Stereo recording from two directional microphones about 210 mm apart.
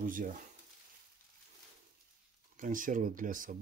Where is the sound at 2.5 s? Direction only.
40° right (ahead or behind).